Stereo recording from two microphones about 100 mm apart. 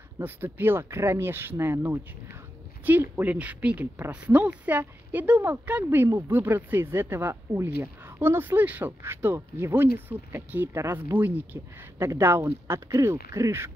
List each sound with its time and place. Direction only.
0.2 s a woman's voice: 20° right (ahead or behind)
11.1 s speech: 20° right (ahead or behind)